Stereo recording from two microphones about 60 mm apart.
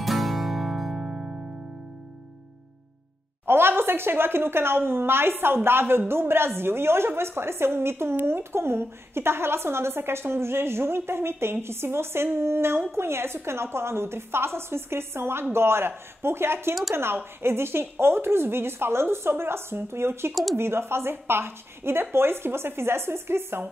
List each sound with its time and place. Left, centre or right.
0.0 s music: centre
3.4 s a woman's voice: right